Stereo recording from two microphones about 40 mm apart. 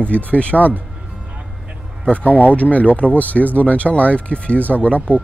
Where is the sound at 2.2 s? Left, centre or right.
Left.